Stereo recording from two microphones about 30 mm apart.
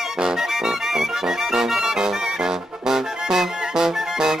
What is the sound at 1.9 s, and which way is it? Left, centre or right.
Brass instrument, centre.